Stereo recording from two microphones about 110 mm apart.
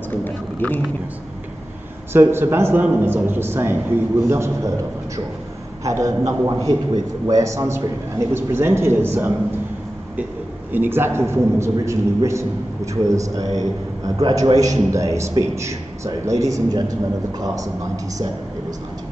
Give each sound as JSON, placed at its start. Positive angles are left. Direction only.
{"t": 0.1, "sound": "speech", "side_deg": 15}
{"t": 2.1, "sound": "a man's voice", "side_deg": -20}
{"t": 10.7, "sound": "a man's voice", "side_deg": -20}